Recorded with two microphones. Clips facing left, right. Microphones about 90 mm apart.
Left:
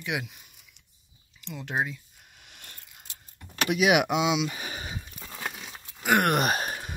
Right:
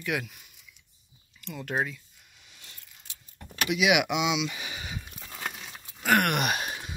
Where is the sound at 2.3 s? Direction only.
55° left (ahead or behind).